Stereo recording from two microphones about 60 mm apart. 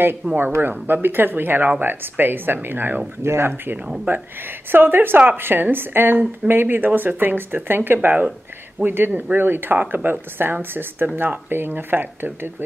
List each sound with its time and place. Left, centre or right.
0.4 s a woman's voice: right